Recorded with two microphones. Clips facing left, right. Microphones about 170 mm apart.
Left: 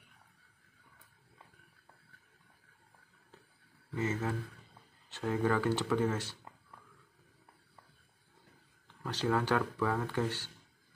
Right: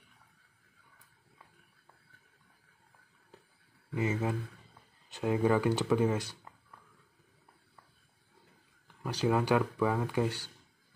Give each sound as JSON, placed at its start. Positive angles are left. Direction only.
{"t": 3.9, "sound": "speech", "side_deg": -15}
{"t": 8.8, "sound": "speech", "side_deg": -10}